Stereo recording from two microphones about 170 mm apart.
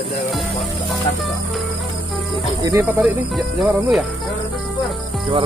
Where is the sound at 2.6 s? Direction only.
15° right (ahead or behind).